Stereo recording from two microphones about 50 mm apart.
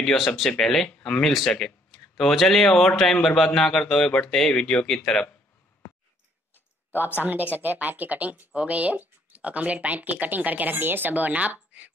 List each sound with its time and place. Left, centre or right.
0.0 s a man's voice: centre
6.9 s speech: left
7.5 s speech: right